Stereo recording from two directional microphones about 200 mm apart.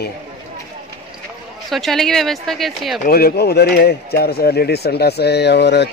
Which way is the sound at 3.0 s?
50° left (ahead or behind).